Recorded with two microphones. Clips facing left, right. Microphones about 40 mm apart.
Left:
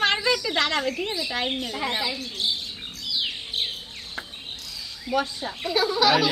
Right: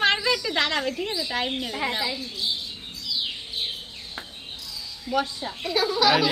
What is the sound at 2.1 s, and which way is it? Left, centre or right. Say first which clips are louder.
Chirp: left 1 dB; left.